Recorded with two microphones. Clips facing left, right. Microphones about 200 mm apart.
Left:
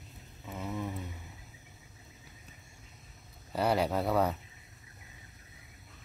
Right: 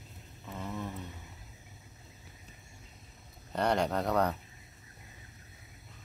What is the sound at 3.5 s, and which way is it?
Speech, 5° left (ahead or behind).